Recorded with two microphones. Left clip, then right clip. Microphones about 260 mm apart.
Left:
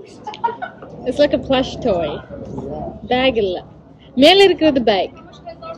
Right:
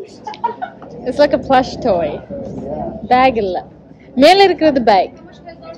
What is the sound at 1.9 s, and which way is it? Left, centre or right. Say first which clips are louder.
Speech: right 1 dB; right.